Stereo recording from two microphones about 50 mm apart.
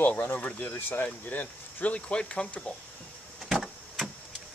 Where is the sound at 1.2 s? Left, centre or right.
Left.